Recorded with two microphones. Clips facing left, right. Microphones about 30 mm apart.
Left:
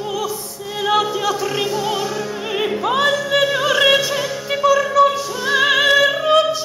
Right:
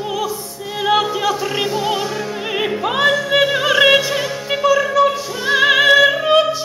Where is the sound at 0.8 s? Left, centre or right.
Centre.